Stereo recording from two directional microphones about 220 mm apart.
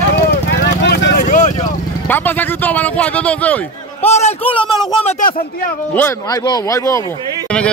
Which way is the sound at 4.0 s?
30° left (ahead or behind).